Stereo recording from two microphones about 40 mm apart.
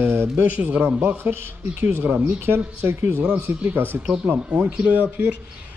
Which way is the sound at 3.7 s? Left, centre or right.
Right.